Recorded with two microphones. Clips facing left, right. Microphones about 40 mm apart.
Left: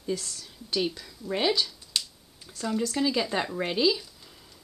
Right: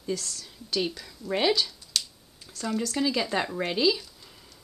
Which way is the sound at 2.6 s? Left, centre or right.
Centre.